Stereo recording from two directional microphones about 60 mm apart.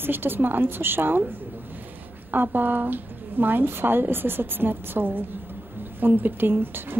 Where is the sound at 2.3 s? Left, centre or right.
Right.